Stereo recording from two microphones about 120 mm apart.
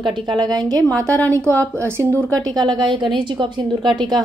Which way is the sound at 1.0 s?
15° left (ahead or behind).